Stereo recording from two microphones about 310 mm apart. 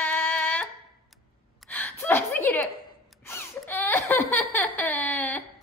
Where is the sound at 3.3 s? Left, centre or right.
Centre.